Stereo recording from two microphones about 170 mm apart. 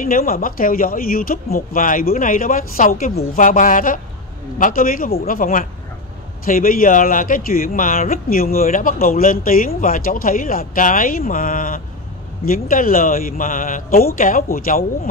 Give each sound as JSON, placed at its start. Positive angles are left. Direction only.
{"t": 0.0, "sound": "speech", "side_deg": 55}